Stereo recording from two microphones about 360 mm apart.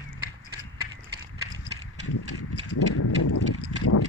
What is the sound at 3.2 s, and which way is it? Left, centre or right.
Horse, left.